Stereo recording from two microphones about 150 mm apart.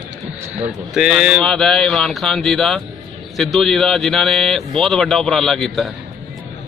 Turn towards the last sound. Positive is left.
turn(degrees=0)  # may be behind; listen again after turning